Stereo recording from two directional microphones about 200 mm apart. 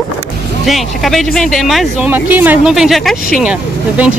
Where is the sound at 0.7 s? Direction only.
Centre (ahead or behind).